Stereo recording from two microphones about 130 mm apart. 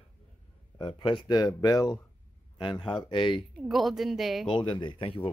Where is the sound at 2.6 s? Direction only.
40° left (ahead or behind).